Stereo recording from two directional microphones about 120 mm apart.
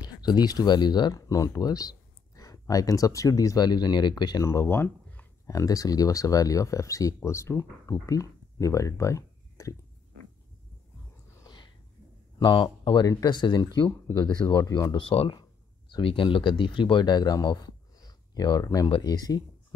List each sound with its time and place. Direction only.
0.0 s speech: 35° left (ahead or behind)
4.5 s speech: 20° left (ahead or behind)
5.5 s speech: 30° left (ahead or behind)
11.4 s a sound: 40° left (ahead or behind)
12.4 s speech: 40° left (ahead or behind)
15.0 s speech: 45° left (ahead or behind)